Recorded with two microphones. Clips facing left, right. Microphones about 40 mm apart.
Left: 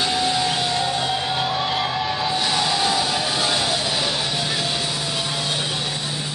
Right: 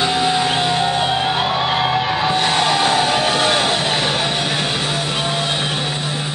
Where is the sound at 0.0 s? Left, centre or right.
Right.